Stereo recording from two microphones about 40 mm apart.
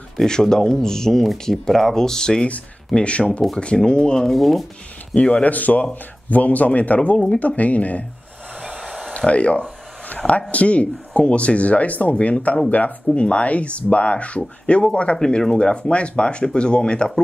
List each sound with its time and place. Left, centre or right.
0.2 s speech: centre
3.0 s speech: left
4.3 s speech: centre
5.1 s speech: left
5.4 s speech: left
8.5 s a sound: centre
9.1 s speech: left
13.1 s speech: left
15.1 s speech: centre